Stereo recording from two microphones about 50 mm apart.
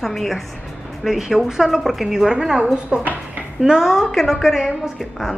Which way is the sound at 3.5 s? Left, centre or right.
Centre.